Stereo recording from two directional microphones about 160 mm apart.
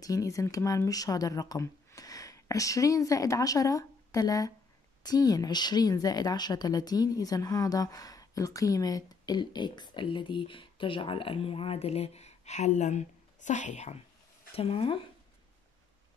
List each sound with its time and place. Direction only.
0.0 s speech: 20° left (ahead or behind); by 13.9 s 45° left (ahead or behind)
14.5 s speech: 35° left (ahead or behind)